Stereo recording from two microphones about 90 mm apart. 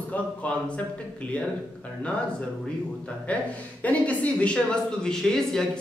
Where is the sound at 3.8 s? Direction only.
15° left (ahead or behind).